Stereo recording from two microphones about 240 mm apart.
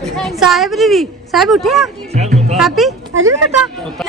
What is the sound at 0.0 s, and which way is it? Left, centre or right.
A woman's voice, centre.